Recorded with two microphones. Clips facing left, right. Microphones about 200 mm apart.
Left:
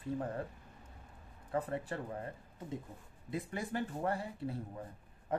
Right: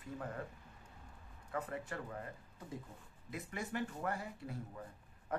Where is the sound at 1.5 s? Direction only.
30° left (ahead or behind).